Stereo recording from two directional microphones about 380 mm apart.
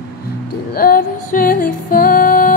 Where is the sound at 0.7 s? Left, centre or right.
Left.